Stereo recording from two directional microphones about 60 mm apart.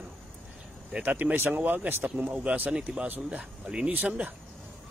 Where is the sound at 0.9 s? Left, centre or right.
Right.